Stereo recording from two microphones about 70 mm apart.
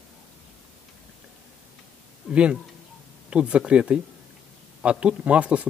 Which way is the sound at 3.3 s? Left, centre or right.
Centre.